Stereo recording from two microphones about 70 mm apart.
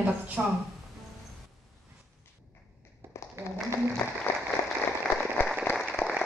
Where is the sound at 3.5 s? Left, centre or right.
Left.